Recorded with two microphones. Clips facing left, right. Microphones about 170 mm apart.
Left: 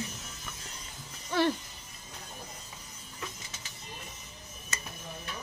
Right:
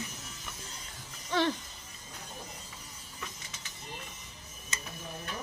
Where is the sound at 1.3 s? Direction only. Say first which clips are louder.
Left 2 dB; 10° left (ahead or behind).